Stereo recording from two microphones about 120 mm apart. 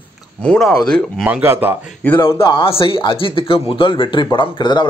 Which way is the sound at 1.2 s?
15° right (ahead or behind).